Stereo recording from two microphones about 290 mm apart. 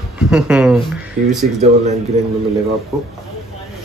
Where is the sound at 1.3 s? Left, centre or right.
Right.